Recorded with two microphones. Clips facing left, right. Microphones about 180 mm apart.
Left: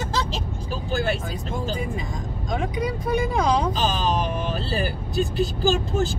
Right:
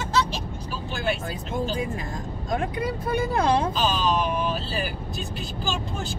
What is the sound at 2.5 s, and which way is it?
Speech, centre (ahead or behind).